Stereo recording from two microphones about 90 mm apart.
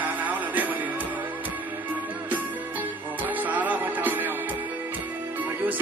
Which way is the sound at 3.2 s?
20° right (ahead or behind).